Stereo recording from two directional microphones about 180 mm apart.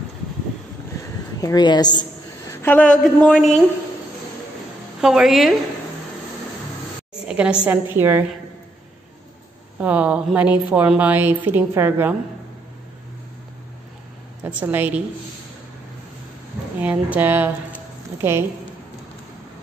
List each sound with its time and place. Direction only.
1.4 s a woman's voice: 25° left (ahead or behind)
2.5 s a sound: 10° left (ahead or behind)
3.0 s a woman's voice: centre (ahead or behind)
5.0 s a woman's voice: centre (ahead or behind)
7.2 s a sound: 5° right (ahead or behind)
7.6 s a woman's voice: 10° right (ahead or behind)
9.8 s a woman's voice: 5° right (ahead or behind)
14.4 s a woman's voice: 10° right (ahead or behind)
16.8 s a woman's voice: 10° right (ahead or behind)